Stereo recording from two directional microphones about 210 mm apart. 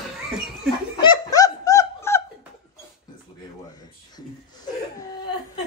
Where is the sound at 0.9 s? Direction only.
20° left (ahead or behind).